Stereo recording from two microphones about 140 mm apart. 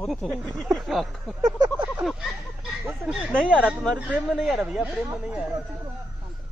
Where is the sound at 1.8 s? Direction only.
5° right (ahead or behind).